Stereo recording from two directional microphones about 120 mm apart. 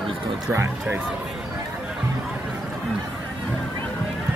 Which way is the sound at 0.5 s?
20° right (ahead or behind).